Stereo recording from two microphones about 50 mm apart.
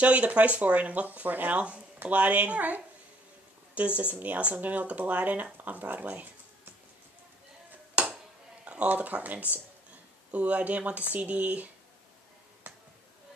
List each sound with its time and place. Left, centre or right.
0.0 s speech: right
7.9 s a sound: right
8.8 s speech: right